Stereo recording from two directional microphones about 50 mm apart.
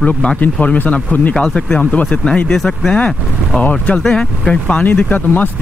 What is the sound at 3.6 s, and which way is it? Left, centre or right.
Speech, left.